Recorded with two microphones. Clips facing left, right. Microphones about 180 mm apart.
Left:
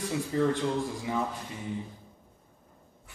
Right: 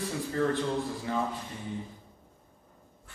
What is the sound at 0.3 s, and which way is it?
Speech, 15° left (ahead or behind).